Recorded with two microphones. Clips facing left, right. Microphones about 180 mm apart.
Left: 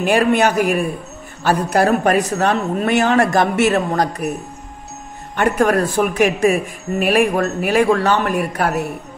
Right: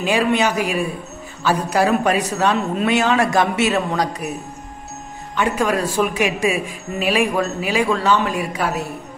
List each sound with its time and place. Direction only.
0.0 s a man's voice: 55° left (ahead or behind)
5.3 s speech: 55° left (ahead or behind)